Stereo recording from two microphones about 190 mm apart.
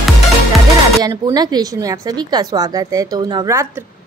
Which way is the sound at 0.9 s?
20° right (ahead or behind).